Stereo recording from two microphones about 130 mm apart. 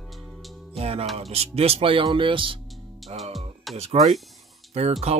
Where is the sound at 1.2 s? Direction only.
50° right (ahead or behind).